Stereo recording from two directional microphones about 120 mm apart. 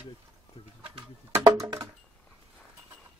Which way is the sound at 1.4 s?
35° right (ahead or behind).